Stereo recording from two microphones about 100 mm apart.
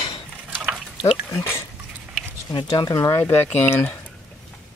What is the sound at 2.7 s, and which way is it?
Speech, 35° left (ahead or behind).